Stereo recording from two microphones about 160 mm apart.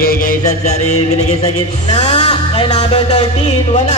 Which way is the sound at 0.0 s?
65° left (ahead or behind).